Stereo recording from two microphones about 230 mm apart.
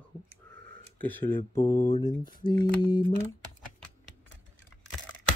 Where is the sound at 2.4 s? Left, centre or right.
Centre.